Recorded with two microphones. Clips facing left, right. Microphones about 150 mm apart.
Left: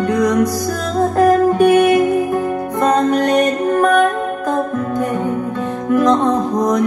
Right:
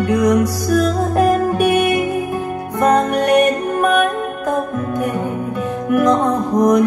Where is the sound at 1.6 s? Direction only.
25° left (ahead or behind).